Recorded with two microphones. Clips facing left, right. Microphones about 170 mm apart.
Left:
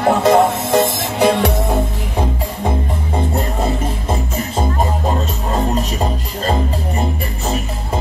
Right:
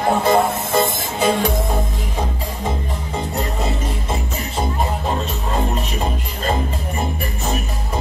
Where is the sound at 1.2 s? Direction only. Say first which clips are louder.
Left 4 dB; 70° left (ahead or behind).